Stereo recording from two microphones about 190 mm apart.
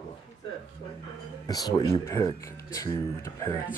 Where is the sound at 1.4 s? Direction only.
20° left (ahead or behind).